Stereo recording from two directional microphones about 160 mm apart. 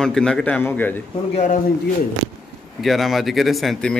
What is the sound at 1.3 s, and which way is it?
Speech, 50° left (ahead or behind).